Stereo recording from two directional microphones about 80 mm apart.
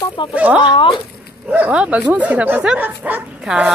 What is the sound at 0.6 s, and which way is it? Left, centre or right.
Speech, left.